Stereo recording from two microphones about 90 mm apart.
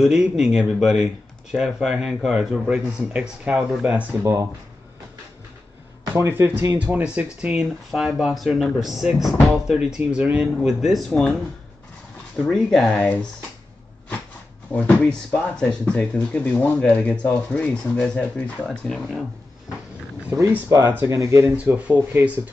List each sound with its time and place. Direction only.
0.0 s speech: 5° right (ahead or behind)
4.2 s speech: 35° right (ahead or behind)
6.1 s speech: 30° right (ahead or behind)
7.4 s speech: 5° right (ahead or behind)
12.4 s speech: centre (ahead or behind)
14.7 s speech: 15° left (ahead or behind)
20.6 s speech: 30° right (ahead or behind)
21.7 s speech: 15° right (ahead or behind)